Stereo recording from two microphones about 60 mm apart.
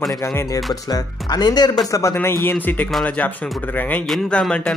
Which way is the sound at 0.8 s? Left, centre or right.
Left.